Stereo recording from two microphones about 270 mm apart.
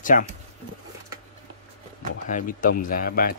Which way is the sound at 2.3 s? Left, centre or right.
Left.